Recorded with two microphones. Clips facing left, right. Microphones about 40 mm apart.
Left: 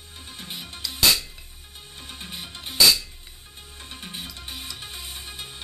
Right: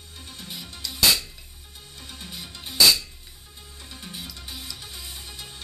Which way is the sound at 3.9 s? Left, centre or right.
Left.